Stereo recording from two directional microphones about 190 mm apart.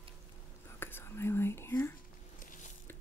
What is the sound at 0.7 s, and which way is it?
Whispering, 10° left (ahead or behind).